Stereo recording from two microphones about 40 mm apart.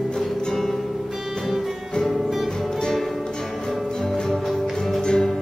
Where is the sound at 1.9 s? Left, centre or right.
Centre.